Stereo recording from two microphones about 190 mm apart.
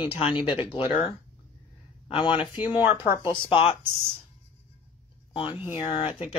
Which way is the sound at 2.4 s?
10° right (ahead or behind).